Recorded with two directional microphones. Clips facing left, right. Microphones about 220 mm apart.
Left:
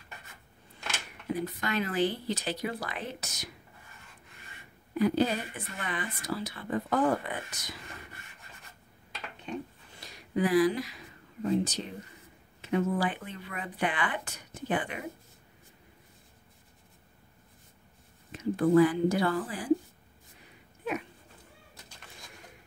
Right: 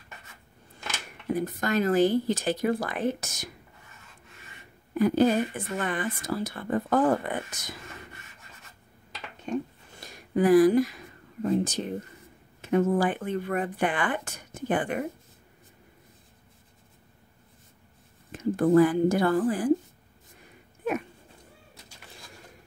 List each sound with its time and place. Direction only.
1.3 s speech: 45° right (ahead or behind)
4.9 s speech: 50° right (ahead or behind)
9.5 s a sound: 50° right (ahead or behind)
11.4 s speech: 50° right (ahead or behind)
18.3 s speech: 50° right (ahead or behind)